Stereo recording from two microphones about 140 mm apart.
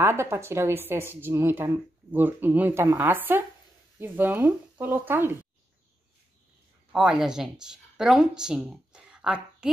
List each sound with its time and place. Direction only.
0.0 s speech: 20° right (ahead or behind)
6.9 s speech: 5° right (ahead or behind)